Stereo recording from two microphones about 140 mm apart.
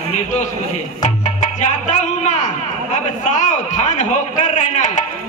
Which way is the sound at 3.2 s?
60° left (ahead or behind).